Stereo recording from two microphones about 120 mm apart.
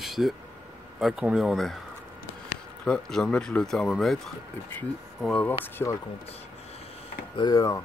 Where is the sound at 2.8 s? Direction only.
5° left (ahead or behind).